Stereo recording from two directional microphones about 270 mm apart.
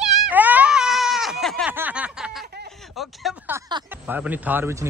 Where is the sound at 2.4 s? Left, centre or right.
Right.